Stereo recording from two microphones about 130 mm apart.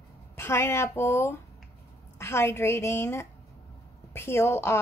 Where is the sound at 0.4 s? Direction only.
20° left (ahead or behind).